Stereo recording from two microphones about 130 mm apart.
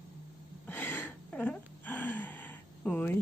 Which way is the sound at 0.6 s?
15° left (ahead or behind).